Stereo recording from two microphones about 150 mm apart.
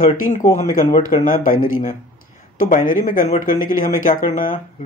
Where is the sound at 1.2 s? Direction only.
65° left (ahead or behind).